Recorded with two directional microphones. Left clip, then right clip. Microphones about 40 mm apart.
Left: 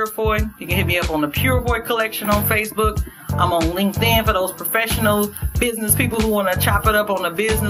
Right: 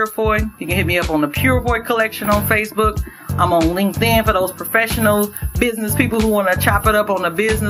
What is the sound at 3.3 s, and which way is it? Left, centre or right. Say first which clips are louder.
Speech: right 2 dB; centre.